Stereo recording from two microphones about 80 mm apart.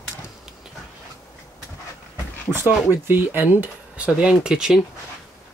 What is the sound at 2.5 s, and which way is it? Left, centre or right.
Speech, right.